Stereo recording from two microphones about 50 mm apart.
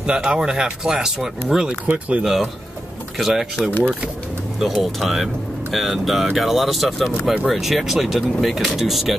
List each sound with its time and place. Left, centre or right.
0.0 s speech: centre
1.9 s speech: right
3.2 s speech: centre